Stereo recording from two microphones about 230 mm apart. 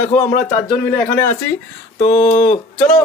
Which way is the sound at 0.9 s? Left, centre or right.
Centre.